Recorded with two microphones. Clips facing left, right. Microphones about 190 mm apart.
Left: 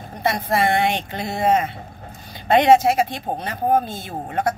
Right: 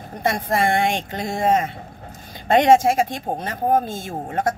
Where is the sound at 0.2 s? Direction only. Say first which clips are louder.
Even; 50° right (ahead or behind).